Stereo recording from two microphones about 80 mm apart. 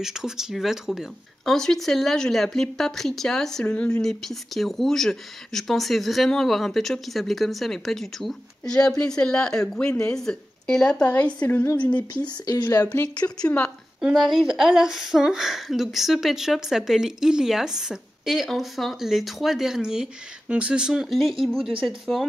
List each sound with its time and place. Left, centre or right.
0.0 s speech: centre
12.3 s speech: left
12.8 s speech: left
14.1 s speech: centre